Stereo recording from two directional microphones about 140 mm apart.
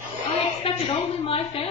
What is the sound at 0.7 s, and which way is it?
Speech, 45° left (ahead or behind).